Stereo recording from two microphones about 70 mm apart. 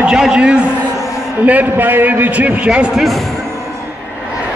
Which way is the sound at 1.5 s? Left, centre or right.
Right.